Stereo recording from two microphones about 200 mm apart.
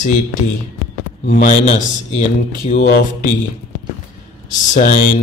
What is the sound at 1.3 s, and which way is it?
Mantra, 40° left (ahead or behind).